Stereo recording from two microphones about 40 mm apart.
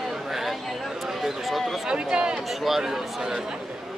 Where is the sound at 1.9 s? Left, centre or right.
Right.